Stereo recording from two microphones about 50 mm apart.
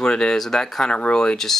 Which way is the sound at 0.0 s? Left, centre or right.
Centre.